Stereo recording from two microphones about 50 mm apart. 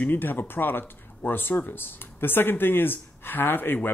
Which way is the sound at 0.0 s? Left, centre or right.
Left.